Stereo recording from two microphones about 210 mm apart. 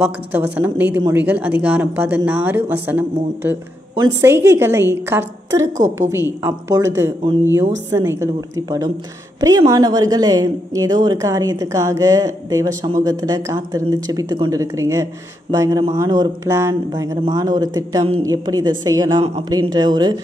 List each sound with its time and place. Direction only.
0.0 s a woman's voice: 10° right (ahead or behind)